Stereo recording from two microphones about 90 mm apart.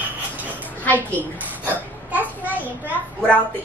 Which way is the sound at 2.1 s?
20° right (ahead or behind).